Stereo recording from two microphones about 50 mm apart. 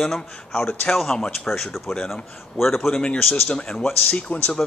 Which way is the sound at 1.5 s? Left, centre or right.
Centre.